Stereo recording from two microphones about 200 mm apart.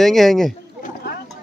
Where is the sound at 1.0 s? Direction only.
55° left (ahead or behind).